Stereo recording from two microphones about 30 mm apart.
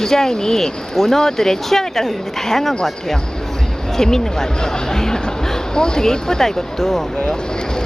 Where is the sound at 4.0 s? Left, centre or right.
Centre.